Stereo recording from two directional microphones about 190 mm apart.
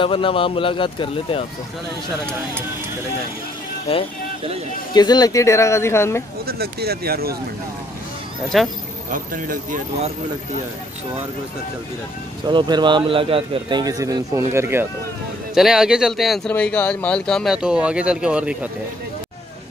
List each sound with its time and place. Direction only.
0.0 s speech: 30° left (ahead or behind)
4.9 s speech: 20° left (ahead or behind)
6.4 s speech: 55° right (ahead or behind)
8.5 s speech: centre (ahead or behind)
9.1 s speech: 45° right (ahead or behind)
12.4 s speech: 25° right (ahead or behind)
15.5 s speech: centre (ahead or behind)